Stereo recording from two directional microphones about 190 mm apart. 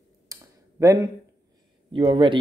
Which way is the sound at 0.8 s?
15° right (ahead or behind).